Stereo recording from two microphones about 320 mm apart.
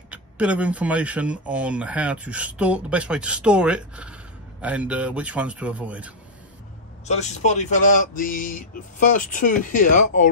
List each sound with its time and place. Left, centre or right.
0.1 s speech: centre
7.1 s speech: left